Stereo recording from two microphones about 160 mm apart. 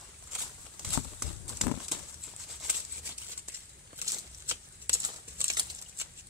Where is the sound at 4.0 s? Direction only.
15° right (ahead or behind).